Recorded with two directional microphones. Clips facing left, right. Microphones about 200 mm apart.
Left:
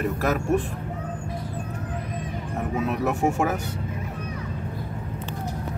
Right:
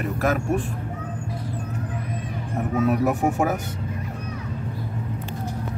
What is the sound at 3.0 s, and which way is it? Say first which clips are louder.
Speech: right 2 dB; centre (ahead or behind).